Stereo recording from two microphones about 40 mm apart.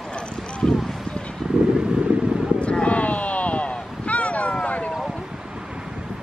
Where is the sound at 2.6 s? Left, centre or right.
Left.